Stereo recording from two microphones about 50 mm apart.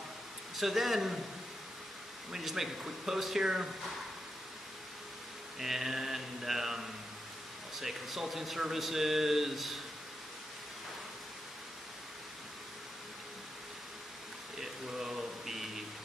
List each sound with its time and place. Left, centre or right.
0.6 s a man's voice: centre
2.3 s mantra: centre
5.6 s mantra: centre
7.7 s a man's voice: centre
14.6 s a sound: centre